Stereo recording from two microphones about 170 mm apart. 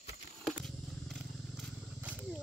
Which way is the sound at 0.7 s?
Centre (ahead or behind).